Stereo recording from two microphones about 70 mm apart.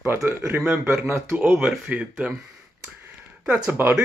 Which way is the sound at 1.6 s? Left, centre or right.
Centre.